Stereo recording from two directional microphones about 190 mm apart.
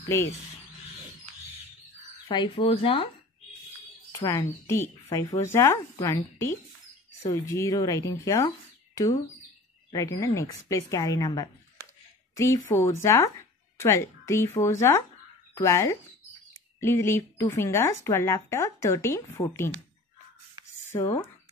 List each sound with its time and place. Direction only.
2.2 s speech: 25° left (ahead or behind)
4.1 s speech: 15° left (ahead or behind)
9.8 s speech: 20° left (ahead or behind)
20.9 s speech: 15° left (ahead or behind)